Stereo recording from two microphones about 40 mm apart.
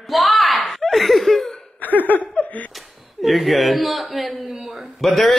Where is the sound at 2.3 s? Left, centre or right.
Left.